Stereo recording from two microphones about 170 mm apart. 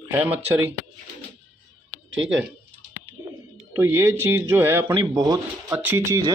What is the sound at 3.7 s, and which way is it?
Speech, 15° right (ahead or behind).